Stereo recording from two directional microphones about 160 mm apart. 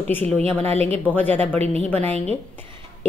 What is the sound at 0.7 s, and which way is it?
Speech, 40° right (ahead or behind).